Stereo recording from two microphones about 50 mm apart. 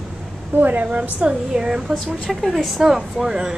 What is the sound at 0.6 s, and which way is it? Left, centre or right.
Speech, right.